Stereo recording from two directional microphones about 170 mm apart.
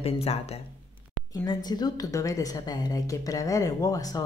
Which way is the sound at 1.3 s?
25° left (ahead or behind).